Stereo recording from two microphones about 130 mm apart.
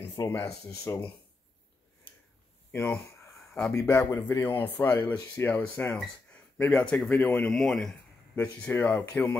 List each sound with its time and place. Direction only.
0.0 s speech: 20° left (ahead or behind)
2.7 s speech: 20° left (ahead or behind)
3.3 s a sound: 5° left (ahead or behind)
3.7 s speech: 15° left (ahead or behind)